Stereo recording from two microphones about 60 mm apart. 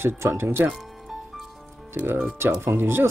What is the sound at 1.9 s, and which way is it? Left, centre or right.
Speech, right.